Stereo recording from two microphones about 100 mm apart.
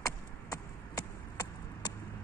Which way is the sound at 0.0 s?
35° left (ahead or behind).